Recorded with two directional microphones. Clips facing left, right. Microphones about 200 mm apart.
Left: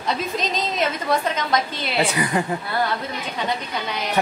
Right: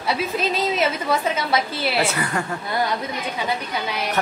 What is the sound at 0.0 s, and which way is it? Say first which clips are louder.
A woman's voice: right 2 dB; 10° right (ahead or behind).